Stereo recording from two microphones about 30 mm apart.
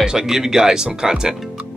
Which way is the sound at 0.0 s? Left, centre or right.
Centre.